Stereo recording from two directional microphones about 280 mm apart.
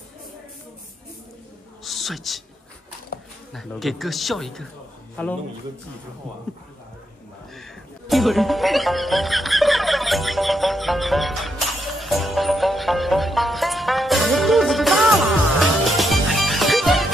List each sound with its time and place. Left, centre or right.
1.9 s a man's voice: centre
3.1 s bee: left
3.5 s speech: centre
7.5 s music: centre